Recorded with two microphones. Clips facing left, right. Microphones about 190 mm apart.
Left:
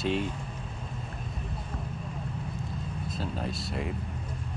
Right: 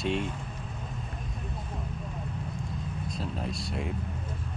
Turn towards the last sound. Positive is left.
turn(degrees=0)  # may be behind; listen again after turning